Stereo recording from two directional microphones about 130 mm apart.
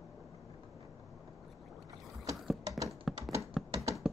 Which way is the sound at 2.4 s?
Centre (ahead or behind).